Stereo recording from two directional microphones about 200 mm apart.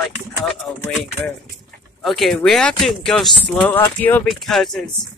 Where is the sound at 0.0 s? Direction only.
Centre (ahead or behind).